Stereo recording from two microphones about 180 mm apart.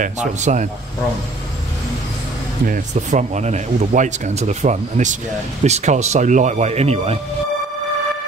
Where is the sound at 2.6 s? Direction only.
45° right (ahead or behind).